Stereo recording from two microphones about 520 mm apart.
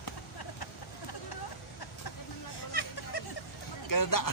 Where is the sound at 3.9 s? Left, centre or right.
Left.